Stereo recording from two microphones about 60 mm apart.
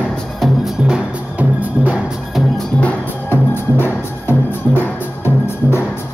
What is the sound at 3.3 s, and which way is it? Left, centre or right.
Music, left.